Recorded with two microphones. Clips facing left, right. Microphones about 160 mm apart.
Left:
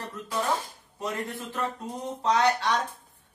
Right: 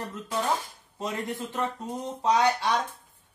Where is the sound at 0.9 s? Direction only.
15° right (ahead or behind).